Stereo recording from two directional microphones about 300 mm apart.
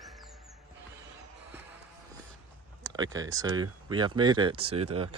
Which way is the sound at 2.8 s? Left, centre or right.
Centre.